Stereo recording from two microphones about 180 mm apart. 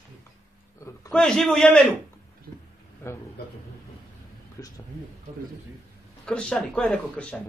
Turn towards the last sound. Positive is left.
turn(degrees=5)  # may be behind; listen again after turning